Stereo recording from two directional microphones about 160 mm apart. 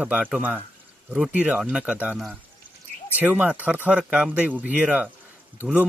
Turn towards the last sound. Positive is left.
turn(degrees=-10)  # may be behind; listen again after turning